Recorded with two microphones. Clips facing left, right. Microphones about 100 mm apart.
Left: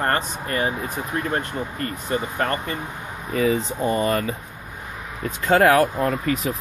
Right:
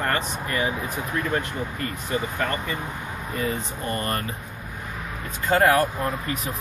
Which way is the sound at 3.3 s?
90° left.